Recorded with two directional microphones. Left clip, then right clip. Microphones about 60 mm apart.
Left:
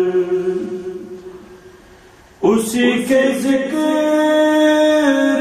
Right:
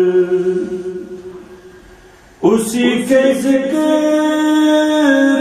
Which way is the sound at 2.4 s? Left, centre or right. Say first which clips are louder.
Right 1 dB; centre.